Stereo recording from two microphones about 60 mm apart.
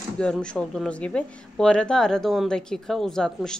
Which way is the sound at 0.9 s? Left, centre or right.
Left.